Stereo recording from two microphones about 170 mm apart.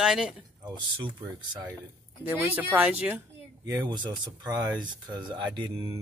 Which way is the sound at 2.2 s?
10° right (ahead or behind).